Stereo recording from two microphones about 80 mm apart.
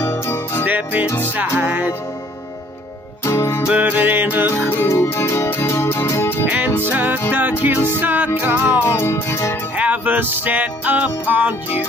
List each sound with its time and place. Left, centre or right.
0.0 s jingle bell: left
0.7 s music: right
3.3 s music: left
3.6 s music: centre
4.8 s music: left
6.8 s music: right
8.8 s music: left
9.8 s music: right